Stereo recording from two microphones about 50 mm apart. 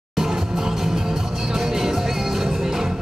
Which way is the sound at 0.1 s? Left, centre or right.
Centre.